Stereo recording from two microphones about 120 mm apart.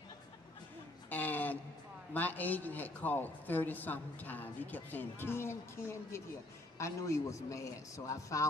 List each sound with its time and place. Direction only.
1.1 s a sound: 15° left (ahead or behind)
2.1 s speech: 15° left (ahead or behind)
6.8 s a man's voice: 25° left (ahead or behind)